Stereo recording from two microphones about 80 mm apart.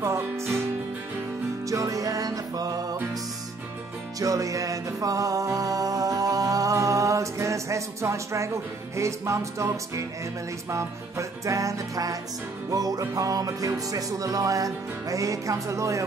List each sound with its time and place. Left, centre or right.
0.0 s music: right
1.7 s music: right
4.2 s music: right